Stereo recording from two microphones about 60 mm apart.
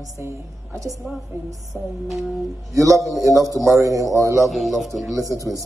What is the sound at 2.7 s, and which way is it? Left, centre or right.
A man's voice, right.